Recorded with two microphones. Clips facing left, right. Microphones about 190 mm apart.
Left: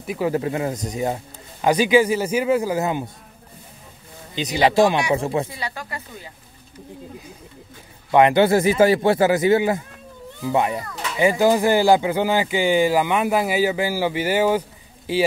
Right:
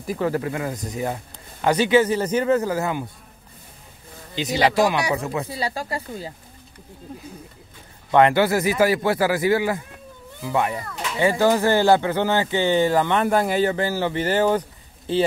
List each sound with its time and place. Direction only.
0.0 s speech: 5° left (ahead or behind)
0.3 s speech: 25° left (ahead or behind)
4.4 s speech: 20° left (ahead or behind)
5.5 s speech: 30° right (ahead or behind)
8.1 s speech: 15° left (ahead or behind)